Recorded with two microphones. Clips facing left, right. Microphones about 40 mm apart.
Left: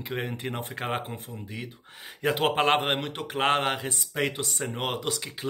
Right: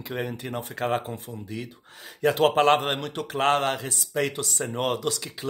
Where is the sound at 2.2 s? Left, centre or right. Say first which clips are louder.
Right 4 dB; centre.